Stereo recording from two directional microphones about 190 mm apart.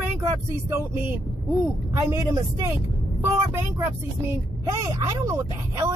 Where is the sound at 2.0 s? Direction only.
20° right (ahead or behind).